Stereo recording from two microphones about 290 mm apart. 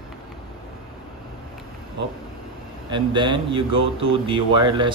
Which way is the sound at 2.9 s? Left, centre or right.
Centre.